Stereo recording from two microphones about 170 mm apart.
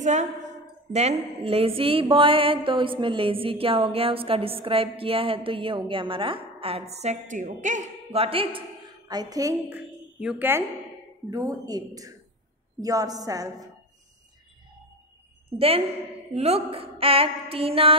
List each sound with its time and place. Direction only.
0.0 s a woman's voice: 45° right (ahead or behind)
0.9 s mantra: 35° right (ahead or behind); by 9.6 s 20° right (ahead or behind)
9.7 s a woman's voice: 10° right (ahead or behind)
11.2 s speech: 20° right (ahead or behind)
15.5 s mantra: 35° right (ahead or behind)